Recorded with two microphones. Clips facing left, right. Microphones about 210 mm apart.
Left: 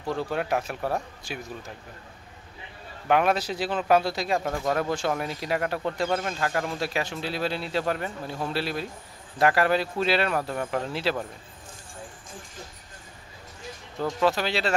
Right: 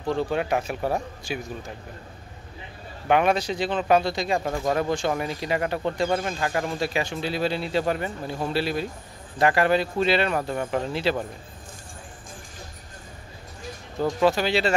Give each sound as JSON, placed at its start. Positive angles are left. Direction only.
{"t": 0.3, "sound": "speech", "side_deg": 0}
{"t": 3.1, "sound": "speech", "side_deg": 0}
{"t": 14.2, "sound": "speech", "side_deg": 0}